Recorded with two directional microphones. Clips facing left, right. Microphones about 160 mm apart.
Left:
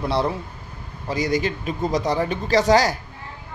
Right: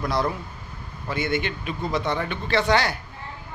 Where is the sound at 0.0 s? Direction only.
30° left (ahead or behind).